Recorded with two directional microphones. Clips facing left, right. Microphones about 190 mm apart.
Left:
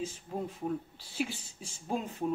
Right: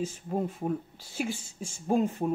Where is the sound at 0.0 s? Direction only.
50° right (ahead or behind).